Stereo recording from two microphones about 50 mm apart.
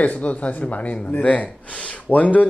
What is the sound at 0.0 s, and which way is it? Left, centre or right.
Speech, left.